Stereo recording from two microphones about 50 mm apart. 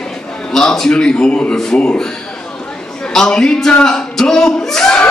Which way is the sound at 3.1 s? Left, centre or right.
Centre.